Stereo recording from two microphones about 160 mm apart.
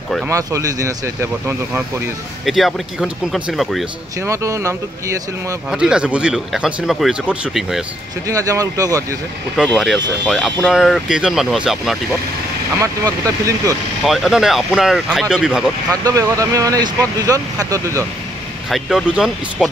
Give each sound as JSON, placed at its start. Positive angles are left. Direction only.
{"t": 0.3, "sound": "speech", "side_deg": -20}
{"t": 2.4, "sound": "speech", "side_deg": 0}
{"t": 4.2, "sound": "speech", "side_deg": -20}
{"t": 5.7, "sound": "speech", "side_deg": -5}
{"t": 8.3, "sound": "speech", "side_deg": -20}
{"t": 9.6, "sound": "speech", "side_deg": -5}
{"t": 12.8, "sound": "speech", "side_deg": -20}
{"t": 14.0, "sound": "speech", "side_deg": 0}
{"t": 15.9, "sound": "speech", "side_deg": -20}
{"t": 18.7, "sound": "speech", "side_deg": 0}